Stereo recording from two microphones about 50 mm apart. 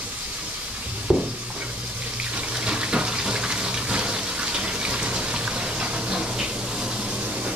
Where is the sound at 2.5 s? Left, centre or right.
Right.